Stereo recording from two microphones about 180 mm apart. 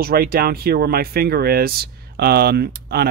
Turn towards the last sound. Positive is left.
turn(degrees=-60)  # may be behind; listen again after turning